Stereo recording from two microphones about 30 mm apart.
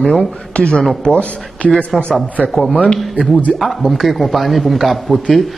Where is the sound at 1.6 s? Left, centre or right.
Left.